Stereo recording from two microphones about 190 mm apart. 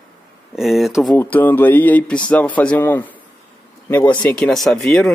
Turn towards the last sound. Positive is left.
turn(degrees=0)  # may be behind; listen again after turning